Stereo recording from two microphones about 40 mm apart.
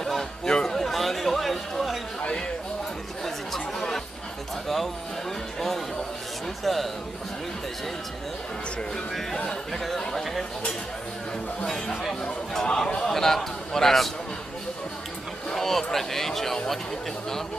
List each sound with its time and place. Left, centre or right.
0.5 s a sound: centre
0.7 s chatter: centre
3.5 s chatter: centre
6.6 s a man's voice: centre
9.5 s speech: centre
11.6 s speech: centre
15.5 s speech: centre